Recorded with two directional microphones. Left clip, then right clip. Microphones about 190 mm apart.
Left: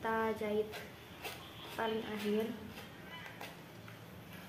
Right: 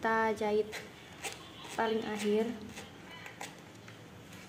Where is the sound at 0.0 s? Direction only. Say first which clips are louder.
Right 5 dB; 50° right (ahead or behind).